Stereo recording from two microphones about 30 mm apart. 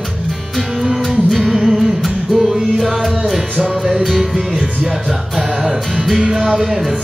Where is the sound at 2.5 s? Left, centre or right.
Centre.